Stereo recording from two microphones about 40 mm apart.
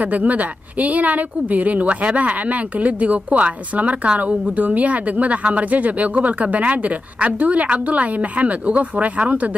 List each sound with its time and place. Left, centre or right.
0.0 s a woman's voice: right